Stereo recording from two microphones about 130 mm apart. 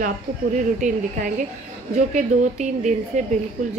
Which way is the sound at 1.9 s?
65° right (ahead or behind).